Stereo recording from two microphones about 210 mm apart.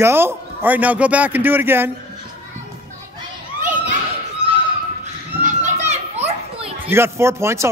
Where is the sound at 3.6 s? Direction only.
40° right (ahead or behind).